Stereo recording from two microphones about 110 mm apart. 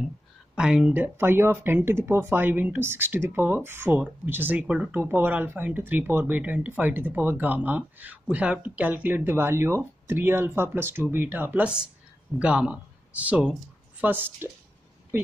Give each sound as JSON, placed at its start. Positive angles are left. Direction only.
{"t": 0.6, "sound": "speech", "side_deg": -10}
{"t": 14.0, "sound": "speech", "side_deg": -20}